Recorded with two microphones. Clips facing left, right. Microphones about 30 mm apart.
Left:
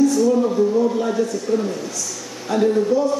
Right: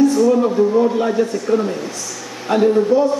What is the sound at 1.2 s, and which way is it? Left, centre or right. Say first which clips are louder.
A man's voice: right 3 dB; right.